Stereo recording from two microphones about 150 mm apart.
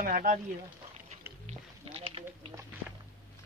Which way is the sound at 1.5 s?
40° right (ahead or behind).